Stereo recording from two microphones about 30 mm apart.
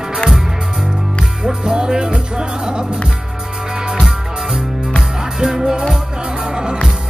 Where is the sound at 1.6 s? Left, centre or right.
Right.